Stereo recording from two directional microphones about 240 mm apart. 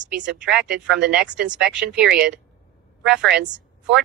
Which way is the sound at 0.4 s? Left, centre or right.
Centre.